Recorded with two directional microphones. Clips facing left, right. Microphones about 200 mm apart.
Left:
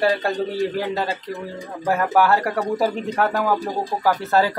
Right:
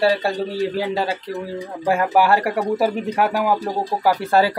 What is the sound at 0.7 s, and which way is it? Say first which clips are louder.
Speech: right 2 dB; 10° right (ahead or behind).